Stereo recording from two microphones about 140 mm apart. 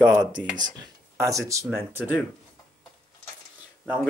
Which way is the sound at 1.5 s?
20° right (ahead or behind).